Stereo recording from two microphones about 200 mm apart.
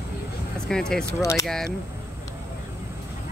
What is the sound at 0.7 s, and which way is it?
Speech, 5° left (ahead or behind).